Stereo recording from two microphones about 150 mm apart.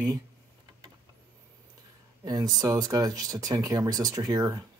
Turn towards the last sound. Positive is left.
turn(degrees=-25)  # may be behind; listen again after turning